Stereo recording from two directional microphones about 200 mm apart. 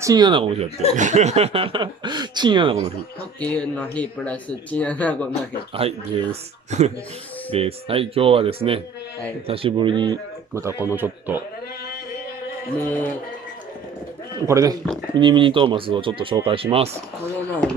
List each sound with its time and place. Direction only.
0.0 s speech: 20° right (ahead or behind)
0.9 s speech: 35° right (ahead or behind)
3.3 s speech: 5° left (ahead or behind)
5.8 s speech: 30° right (ahead or behind)
7.5 s speech: 30° right (ahead or behind); by 11.4 s 10° right (ahead or behind)
12.7 s speech: 10° left (ahead or behind)
14.4 s speech: 15° right (ahead or behind)